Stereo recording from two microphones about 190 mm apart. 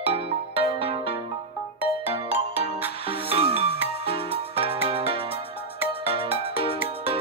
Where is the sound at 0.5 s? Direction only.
60° left (ahead or behind).